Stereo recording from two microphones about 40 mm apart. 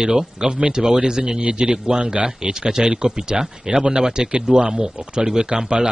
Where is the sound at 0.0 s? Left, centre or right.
Centre.